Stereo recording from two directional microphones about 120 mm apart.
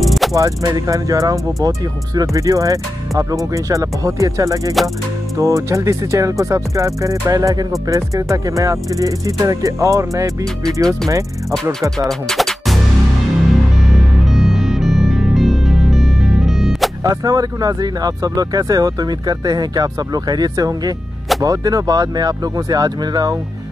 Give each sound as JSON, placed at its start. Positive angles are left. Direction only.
{"t": 0.0, "sound": "music", "side_deg": 0}
{"t": 0.3, "sound": "speech", "side_deg": -30}
{"t": 10.6, "sound": "speech", "side_deg": 5}
{"t": 11.6, "sound": "speech", "side_deg": -25}
{"t": 12.1, "sound": "music", "side_deg": 5}
{"t": 14.2, "sound": "music", "side_deg": 0}
{"t": 17.0, "sound": "speech", "side_deg": -30}